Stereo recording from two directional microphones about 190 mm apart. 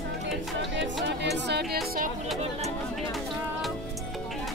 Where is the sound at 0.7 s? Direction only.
65° right (ahead or behind).